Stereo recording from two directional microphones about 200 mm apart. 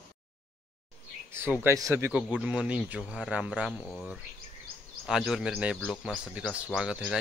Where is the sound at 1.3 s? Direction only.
10° right (ahead or behind).